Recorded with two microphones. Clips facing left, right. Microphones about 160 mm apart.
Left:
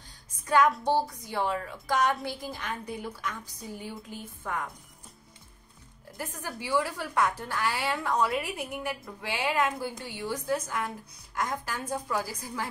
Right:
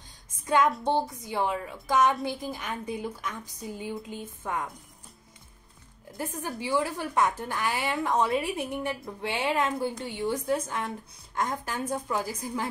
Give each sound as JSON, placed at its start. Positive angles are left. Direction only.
{"t": 0.5, "sound": "a woman's voice", "side_deg": -20}
{"t": 6.6, "sound": "a woman's voice", "side_deg": -20}